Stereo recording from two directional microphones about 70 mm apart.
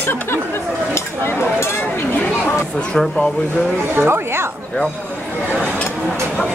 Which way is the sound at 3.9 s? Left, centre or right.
Right.